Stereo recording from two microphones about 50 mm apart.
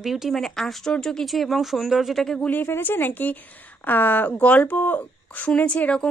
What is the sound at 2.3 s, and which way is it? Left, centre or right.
Speech, left.